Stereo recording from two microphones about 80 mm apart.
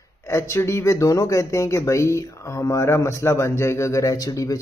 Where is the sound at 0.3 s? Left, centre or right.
Left.